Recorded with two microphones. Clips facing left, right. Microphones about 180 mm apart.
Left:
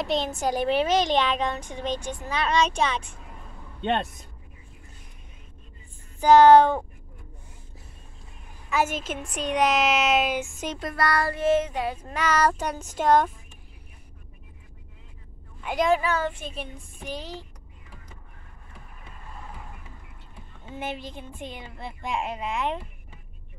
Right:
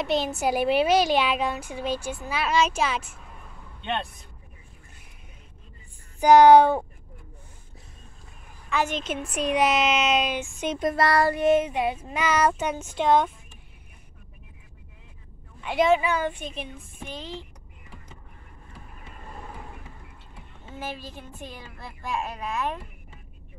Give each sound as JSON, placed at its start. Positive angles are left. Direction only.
{"t": 0.0, "sound": "a woman's voice", "side_deg": -5}
{"t": 6.1, "sound": "a woman's voice", "side_deg": -10}
{"t": 8.6, "sound": "a woman's voice", "side_deg": 5}
{"t": 9.2, "sound": "speech", "side_deg": -5}
{"t": 10.8, "sound": "a woman's voice", "side_deg": -25}
{"t": 15.7, "sound": "a woman's voice", "side_deg": -5}
{"t": 20.8, "sound": "a woman's voice", "side_deg": 20}